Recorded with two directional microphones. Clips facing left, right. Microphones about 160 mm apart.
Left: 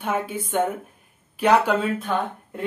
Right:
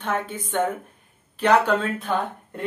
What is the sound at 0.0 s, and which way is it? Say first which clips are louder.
A man's voice: left 1 dB; 10° left (ahead or behind).